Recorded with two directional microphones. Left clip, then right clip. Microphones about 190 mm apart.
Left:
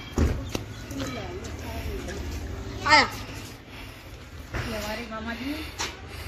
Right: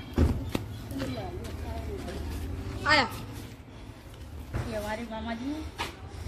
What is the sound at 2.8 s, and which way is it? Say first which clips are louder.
Speech: left 5 dB; 30° left (ahead or behind).